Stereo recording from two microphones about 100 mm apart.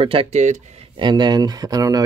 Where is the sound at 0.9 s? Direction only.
45° right (ahead or behind).